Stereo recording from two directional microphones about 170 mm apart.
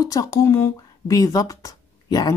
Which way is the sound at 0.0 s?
20° left (ahead or behind).